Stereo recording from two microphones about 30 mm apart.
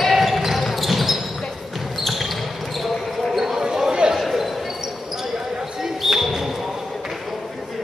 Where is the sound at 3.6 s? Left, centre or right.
Right.